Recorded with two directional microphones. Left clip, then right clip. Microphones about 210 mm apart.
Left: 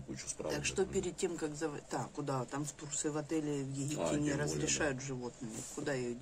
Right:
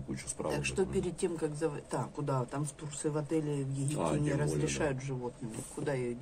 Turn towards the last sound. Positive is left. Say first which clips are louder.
# right 3 dB
turn(degrees=5)  # may be behind; listen again after turning